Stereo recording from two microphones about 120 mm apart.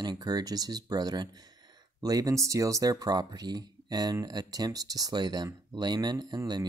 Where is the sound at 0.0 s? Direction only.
35° right (ahead or behind).